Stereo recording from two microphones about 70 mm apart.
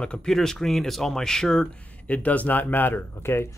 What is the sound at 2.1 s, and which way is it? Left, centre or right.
Speech, left.